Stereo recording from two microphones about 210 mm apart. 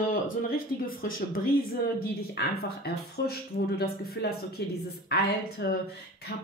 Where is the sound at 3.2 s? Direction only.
50° left (ahead or behind).